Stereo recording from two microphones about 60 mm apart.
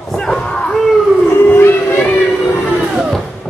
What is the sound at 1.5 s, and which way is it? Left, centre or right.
Music, left.